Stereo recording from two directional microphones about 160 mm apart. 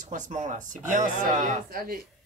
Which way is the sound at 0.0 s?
50° right (ahead or behind).